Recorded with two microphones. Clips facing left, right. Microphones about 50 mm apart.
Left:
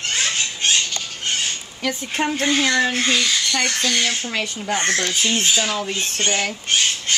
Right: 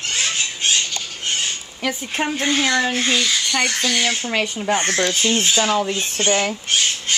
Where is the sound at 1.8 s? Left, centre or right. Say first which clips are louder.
Even; centre.